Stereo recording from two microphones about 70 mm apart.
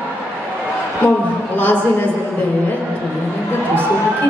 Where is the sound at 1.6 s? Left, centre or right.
Left.